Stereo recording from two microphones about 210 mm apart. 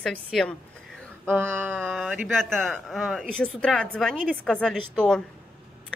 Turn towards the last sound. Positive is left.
turn(degrees=5)  # may be behind; listen again after turning